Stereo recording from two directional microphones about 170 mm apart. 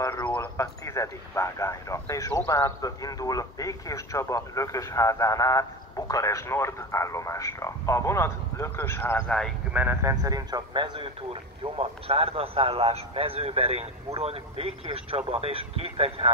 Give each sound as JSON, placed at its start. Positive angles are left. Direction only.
{"t": 0.0, "sound": "speech", "side_deg": 15}
{"t": 9.7, "sound": "a man's voice", "side_deg": -10}